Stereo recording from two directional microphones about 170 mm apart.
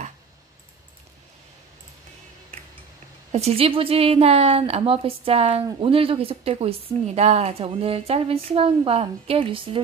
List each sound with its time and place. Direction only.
3.3 s a woman's voice: 40° right (ahead or behind)